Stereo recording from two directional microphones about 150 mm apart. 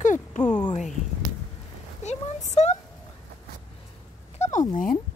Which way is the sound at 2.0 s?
50° left (ahead or behind).